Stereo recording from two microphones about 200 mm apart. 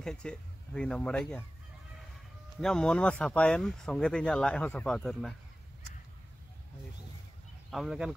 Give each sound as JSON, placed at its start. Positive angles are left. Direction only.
{"t": 0.0, "sound": "speech", "side_deg": 5}
{"t": 2.6, "sound": "speech", "side_deg": 5}
{"t": 7.7, "sound": "speech", "side_deg": 0}